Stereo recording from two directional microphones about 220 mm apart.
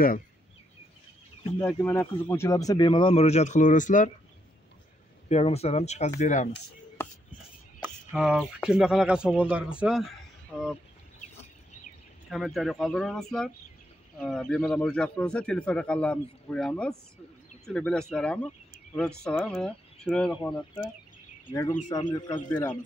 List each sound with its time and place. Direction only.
1.6 s speech: 10° left (ahead or behind); by 4.1 s 35° left (ahead or behind)
5.3 s speech: 30° left (ahead or behind)
7.8 s a sound: 5° right (ahead or behind)
8.6 s speech: 5° right (ahead or behind)
12.3 s speech: centre (ahead or behind)
21.5 s speech: 15° left (ahead or behind)